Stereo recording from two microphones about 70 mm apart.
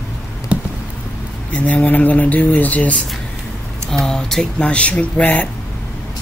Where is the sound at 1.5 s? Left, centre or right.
Left.